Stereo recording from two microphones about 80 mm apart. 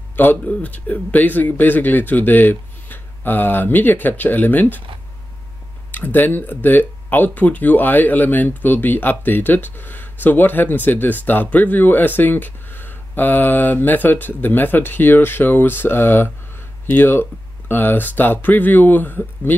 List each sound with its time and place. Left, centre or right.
0.1 s speech: left
5.9 s speech: left